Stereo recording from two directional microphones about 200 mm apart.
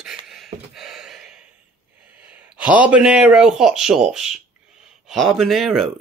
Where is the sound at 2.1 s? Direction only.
10° right (ahead or behind).